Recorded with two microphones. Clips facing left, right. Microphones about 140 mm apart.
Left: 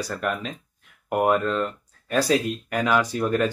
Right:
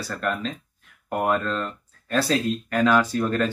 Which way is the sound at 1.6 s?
10° left (ahead or behind).